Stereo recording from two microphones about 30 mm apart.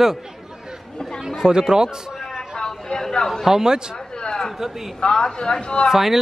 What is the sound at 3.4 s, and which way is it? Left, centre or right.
Speech, centre.